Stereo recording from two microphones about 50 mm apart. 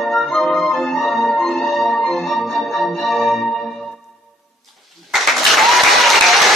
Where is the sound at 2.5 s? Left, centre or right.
Centre.